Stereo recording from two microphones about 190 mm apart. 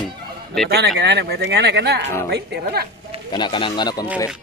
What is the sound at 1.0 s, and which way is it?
Speech, 65° right (ahead or behind).